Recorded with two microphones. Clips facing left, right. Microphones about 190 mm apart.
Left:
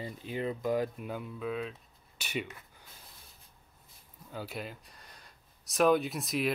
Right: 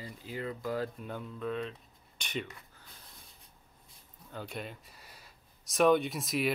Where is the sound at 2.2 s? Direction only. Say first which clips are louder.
Left 1 dB; 5° left (ahead or behind).